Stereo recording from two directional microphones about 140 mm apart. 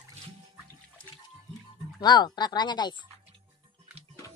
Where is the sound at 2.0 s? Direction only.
30° left (ahead or behind).